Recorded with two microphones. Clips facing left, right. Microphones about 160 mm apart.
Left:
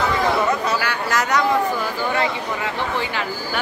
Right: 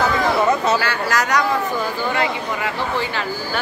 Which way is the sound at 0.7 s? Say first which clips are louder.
Right 2 dB; 15° left (ahead or behind).